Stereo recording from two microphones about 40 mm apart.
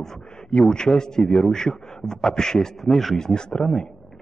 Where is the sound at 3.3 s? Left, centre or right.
Left.